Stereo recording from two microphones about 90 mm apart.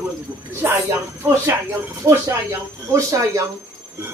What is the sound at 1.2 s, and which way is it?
Speech, 25° right (ahead or behind).